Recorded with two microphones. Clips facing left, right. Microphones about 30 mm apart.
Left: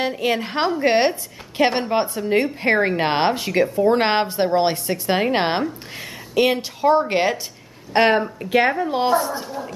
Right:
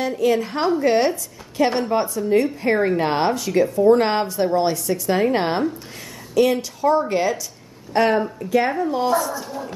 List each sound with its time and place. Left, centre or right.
0.0 s a woman's voice: left
8.6 s speech: left